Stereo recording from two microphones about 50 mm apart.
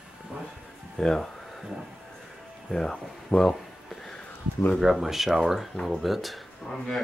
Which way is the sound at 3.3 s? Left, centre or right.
Left.